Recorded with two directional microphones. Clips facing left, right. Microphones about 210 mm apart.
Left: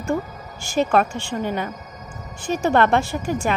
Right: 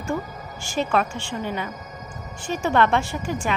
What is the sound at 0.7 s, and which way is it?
A woman's voice, 50° left (ahead or behind).